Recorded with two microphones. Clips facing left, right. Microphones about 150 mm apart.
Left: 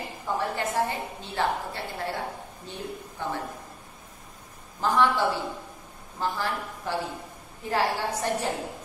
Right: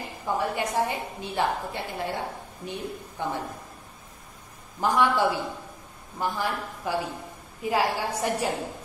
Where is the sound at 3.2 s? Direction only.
15° right (ahead or behind).